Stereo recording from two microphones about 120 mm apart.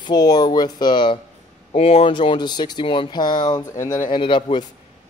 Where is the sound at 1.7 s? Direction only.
55° left (ahead or behind).